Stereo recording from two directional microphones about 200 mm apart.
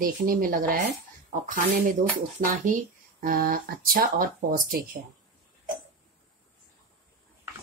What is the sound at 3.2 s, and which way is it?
Speech, 45° right (ahead or behind).